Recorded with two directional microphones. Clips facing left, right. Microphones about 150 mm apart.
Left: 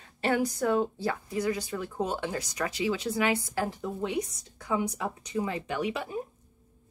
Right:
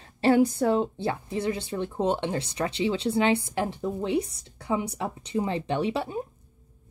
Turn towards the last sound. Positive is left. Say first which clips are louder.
# right 4 dB
turn(degrees=-30)  # may be behind; listen again after turning